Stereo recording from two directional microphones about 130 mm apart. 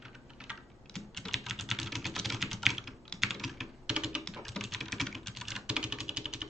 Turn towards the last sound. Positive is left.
turn(degrees=-5)  # may be behind; listen again after turning